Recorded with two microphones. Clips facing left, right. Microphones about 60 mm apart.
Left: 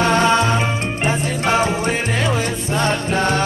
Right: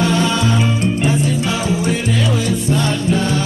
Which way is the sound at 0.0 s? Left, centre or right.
Left.